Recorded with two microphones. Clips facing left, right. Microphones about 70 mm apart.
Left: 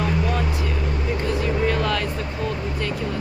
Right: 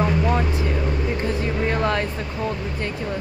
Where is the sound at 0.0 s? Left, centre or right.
Right.